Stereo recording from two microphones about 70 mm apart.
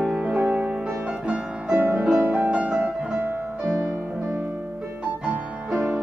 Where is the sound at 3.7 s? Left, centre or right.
Right.